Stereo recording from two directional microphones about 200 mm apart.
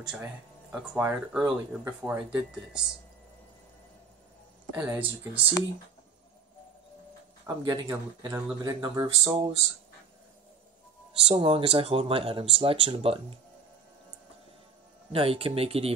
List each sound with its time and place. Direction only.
0.1 s speech: 5° right (ahead or behind)
4.7 s speech: 10° right (ahead or behind)
7.4 s speech: 20° right (ahead or behind)
11.2 s speech: 25° right (ahead or behind)
15.1 s speech: 25° right (ahead or behind)